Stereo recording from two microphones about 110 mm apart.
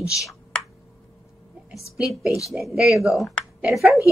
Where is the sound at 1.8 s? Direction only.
Centre (ahead or behind).